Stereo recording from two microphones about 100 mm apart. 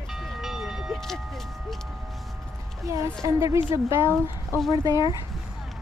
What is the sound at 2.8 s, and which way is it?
Music, 35° right (ahead or behind).